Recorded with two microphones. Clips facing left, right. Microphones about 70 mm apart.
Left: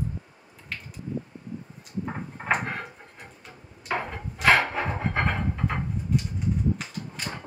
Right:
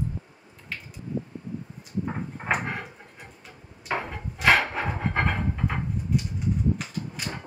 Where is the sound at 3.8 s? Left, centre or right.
Centre.